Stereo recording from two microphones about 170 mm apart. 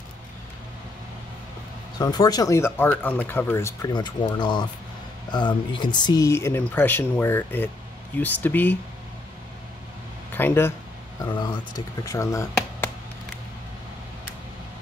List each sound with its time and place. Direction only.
2.0 s speech: 25° left (ahead or behind)
3.9 s speech: 25° left (ahead or behind); by 8.7 s 10° left (ahead or behind)
10.3 s speech: 15° left (ahead or behind)
11.1 s speech: 25° left (ahead or behind)